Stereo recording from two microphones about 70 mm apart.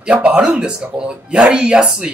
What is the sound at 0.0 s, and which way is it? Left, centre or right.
Speech, centre.